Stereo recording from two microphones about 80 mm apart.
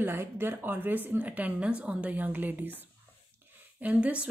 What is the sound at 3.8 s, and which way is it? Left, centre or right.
Speech, centre.